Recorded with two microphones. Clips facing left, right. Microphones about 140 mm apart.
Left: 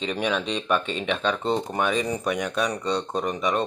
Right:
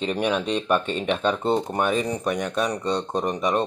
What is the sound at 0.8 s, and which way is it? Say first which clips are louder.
Speech: right 2 dB; 50° right (ahead or behind).